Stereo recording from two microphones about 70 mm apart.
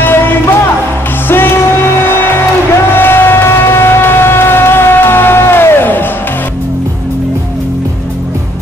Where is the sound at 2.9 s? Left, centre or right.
Left.